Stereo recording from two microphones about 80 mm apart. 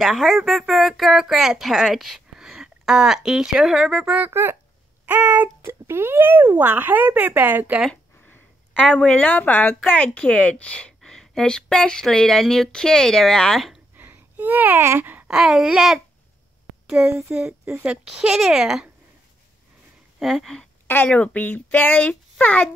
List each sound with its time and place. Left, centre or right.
0.0 s speech: centre
4.0 s speech: centre
4.3 s a child's voice: right
7.9 s a sound: centre
9.8 s speech: centre
13.9 s a sound: right
15.2 s speech: centre
20.2 s speech: centre
20.8 s speech: left
21.1 s speech: centre